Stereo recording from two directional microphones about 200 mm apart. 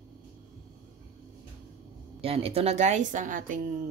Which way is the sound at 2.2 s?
30° right (ahead or behind).